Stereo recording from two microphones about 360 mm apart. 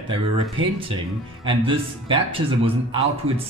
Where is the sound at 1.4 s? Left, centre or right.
Centre.